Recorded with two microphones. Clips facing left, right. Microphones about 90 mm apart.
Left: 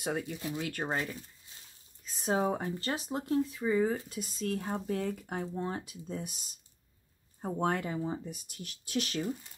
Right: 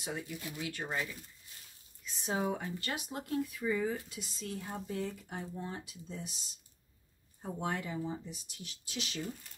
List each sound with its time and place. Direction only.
0.6 s speech: 50° left (ahead or behind)
4.2 s speech: 50° left (ahead or behind)